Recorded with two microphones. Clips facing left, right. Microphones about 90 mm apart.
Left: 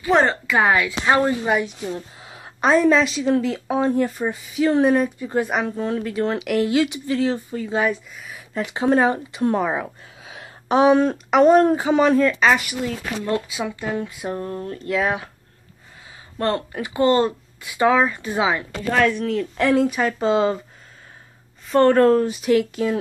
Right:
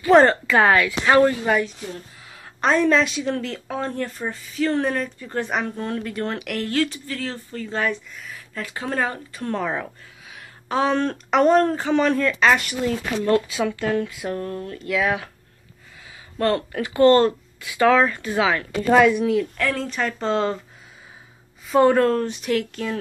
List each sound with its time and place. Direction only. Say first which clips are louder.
0.1 s speech: right 3 dB; 5° left (ahead or behind)
2.0 s a sound: left 5 dB; 25° left (ahead or behind)
2.6 s a woman's voice: left 2 dB; 5° left (ahead or behind)
10.2 s speech: left 6 dB; 25° left (ahead or behind)
16.3 s speech: right 1 dB; 25° left (ahead or behind)
18.9 s speech: right 4 dB; 10° right (ahead or behind)
19.5 s speech: left 7 dB; 20° left (ahead or behind)
19.9 s a woman's voice: left 4 dB; 5° left (ahead or behind)
21.6 s a woman's voice: left 2 dB; 5° right (ahead or behind)